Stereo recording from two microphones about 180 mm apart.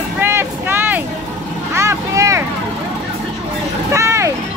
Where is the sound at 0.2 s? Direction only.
10° right (ahead or behind).